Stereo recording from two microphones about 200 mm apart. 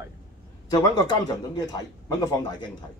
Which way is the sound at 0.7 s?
20° left (ahead or behind).